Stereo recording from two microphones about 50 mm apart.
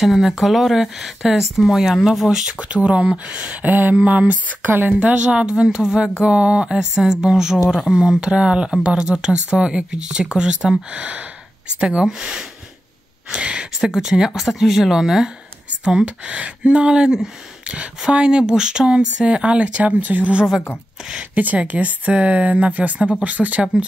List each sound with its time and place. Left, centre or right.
0.0 s speech: centre
2.7 s speech: right
3.6 s speech: right
4.6 s speech: right
5.0 s speech: right
7.5 s speech: centre
13.7 s speech: centre; by 23.6 s right